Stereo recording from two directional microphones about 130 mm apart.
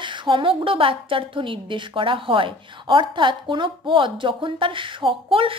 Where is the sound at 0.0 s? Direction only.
40° right (ahead or behind).